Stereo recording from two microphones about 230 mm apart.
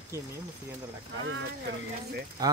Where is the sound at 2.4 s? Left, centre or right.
Centre.